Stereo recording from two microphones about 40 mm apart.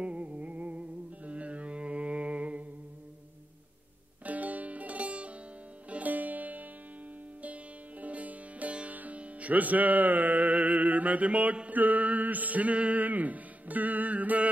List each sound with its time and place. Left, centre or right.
0.0 s music: right
4.2 s music: right
11.7 s male singing: right